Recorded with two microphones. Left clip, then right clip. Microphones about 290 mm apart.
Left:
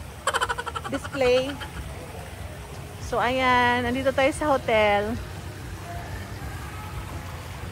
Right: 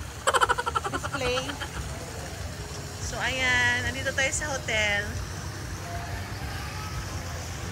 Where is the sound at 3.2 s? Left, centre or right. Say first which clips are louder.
Left 3 dB; centre.